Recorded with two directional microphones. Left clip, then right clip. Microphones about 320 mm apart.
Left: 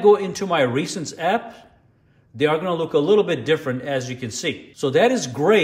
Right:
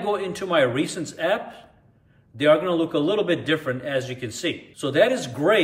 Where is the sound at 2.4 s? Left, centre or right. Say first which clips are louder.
Right 2 dB; centre.